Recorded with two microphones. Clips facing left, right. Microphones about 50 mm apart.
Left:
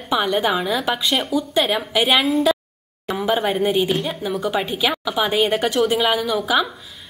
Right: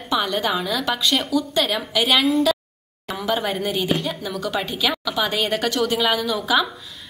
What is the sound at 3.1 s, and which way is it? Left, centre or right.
A woman's voice, centre.